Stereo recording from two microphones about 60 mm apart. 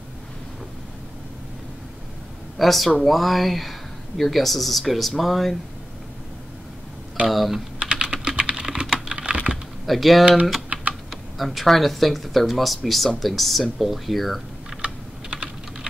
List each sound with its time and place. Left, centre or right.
2.6 s speech: centre
7.2 s typing: centre
7.8 s typing: centre
9.8 s speech: centre
10.7 s typing: right
11.1 s speech: centre
14.8 s computer keyboard: centre